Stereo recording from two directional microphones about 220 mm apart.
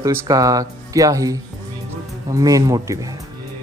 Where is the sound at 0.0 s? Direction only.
15° right (ahead or behind).